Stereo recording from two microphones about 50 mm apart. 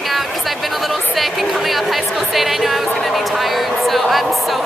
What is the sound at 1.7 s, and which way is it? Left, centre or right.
Speech, centre.